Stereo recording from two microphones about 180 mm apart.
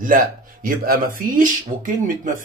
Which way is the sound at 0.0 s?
50° right (ahead or behind).